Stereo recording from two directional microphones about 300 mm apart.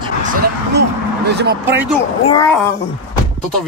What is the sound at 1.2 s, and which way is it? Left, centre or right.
Speech, right.